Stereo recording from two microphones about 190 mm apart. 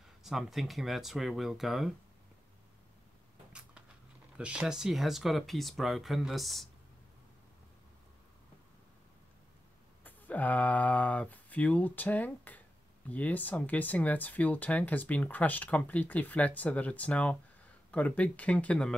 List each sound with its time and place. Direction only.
0.2 s speech: centre (ahead or behind)
4.4 s speech: 5° right (ahead or behind)
10.0 s speech: 10° left (ahead or behind)